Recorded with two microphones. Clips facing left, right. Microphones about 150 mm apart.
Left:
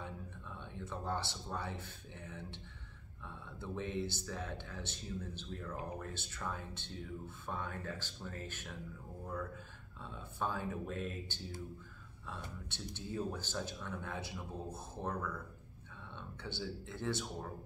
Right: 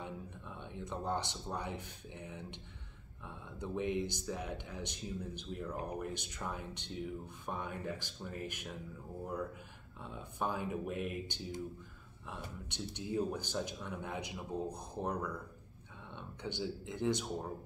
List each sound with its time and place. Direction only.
0.0 s speech: 15° right (ahead or behind)